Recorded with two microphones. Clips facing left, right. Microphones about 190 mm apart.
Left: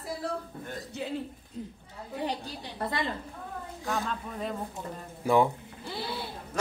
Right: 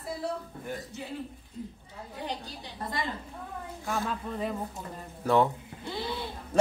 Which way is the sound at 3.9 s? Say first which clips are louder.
Right 1 dB; centre (ahead or behind).